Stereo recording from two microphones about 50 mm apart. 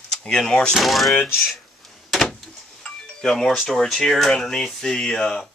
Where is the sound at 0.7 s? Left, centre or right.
Centre.